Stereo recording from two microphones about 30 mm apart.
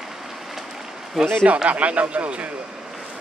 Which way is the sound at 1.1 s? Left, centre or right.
Centre.